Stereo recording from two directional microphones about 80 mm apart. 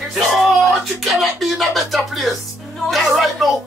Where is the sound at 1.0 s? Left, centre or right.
Centre.